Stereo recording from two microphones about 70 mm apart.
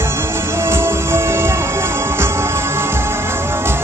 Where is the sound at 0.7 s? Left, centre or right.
Right.